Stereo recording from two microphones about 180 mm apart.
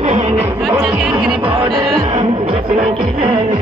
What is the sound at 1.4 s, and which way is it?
Music, 30° right (ahead or behind).